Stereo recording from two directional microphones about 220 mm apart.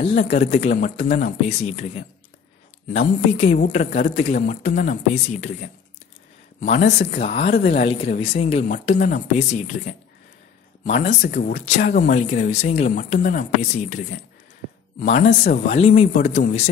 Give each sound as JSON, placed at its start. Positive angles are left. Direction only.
{"t": 0.0, "sound": "speech", "side_deg": 30}
{"t": 7.0, "sound": "speech", "side_deg": 30}